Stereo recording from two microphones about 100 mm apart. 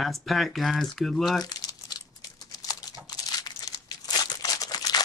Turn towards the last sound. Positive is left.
turn(degrees=40)  # may be behind; listen again after turning